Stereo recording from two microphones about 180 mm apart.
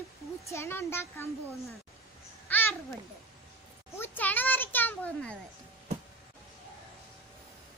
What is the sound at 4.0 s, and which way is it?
A child's voice, 10° left (ahead or behind).